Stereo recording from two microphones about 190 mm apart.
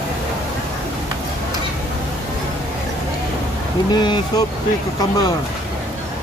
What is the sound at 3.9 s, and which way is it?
Speech, 20° left (ahead or behind).